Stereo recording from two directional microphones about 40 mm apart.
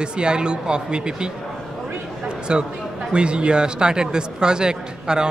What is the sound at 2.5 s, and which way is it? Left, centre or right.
Speech, right.